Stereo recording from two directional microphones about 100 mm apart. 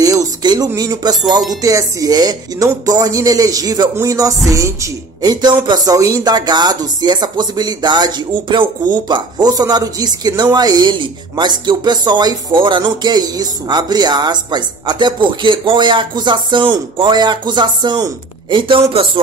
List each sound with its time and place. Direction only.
0.0 s a sound: 40° right (ahead or behind)
0.7 s speech: 40° right (ahead or behind)
5.2 s speech: 45° right (ahead or behind); by 19.0 s 60° right (ahead or behind)